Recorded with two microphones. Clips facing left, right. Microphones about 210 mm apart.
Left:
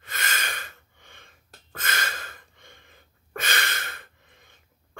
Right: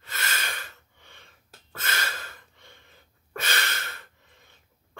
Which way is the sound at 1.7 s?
50° left (ahead or behind).